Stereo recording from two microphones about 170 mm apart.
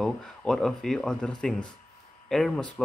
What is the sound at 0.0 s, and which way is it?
Speech, 5° left (ahead or behind).